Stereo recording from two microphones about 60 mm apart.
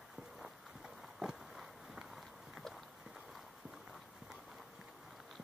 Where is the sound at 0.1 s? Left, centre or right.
Centre.